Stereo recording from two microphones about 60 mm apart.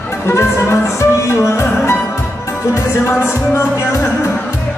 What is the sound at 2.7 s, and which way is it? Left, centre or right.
Music, left.